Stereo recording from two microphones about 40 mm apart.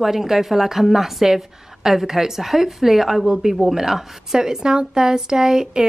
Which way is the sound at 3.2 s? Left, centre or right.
Centre.